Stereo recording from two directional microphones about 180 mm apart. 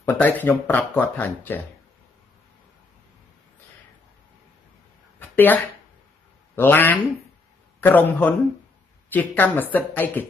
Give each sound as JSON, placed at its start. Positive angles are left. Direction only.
{"t": 0.0, "sound": "speech", "side_deg": 10}
{"t": 5.2, "sound": "a sound", "side_deg": 10}
{"t": 6.5, "sound": "speech", "side_deg": 10}